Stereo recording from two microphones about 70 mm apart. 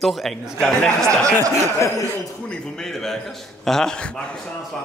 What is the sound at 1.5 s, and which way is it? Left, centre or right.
Speech, left.